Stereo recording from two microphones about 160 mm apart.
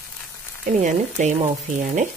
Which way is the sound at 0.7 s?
50° right (ahead or behind).